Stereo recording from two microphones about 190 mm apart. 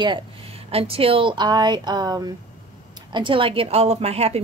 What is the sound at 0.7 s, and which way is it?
A woman's voice, 30° right (ahead or behind).